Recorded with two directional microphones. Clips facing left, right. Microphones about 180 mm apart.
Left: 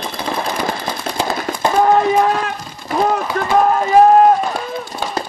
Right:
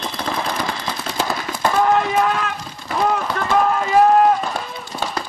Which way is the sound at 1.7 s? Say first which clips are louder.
Left 4 dB; 35° left (ahead or behind).